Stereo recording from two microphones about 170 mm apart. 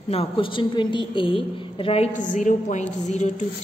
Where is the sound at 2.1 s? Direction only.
50° left (ahead or behind).